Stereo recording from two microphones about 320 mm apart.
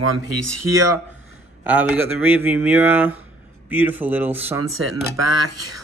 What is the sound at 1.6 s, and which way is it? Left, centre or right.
Speech, centre.